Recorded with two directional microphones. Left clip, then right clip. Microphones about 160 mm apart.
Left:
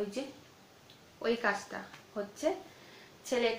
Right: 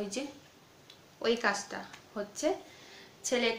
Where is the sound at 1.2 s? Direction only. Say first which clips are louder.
Right 2 dB; 25° right (ahead or behind).